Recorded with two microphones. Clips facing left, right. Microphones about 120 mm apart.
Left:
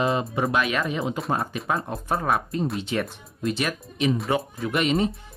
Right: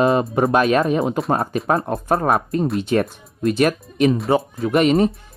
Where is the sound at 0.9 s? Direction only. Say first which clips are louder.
Right 7 dB; 50° right (ahead or behind).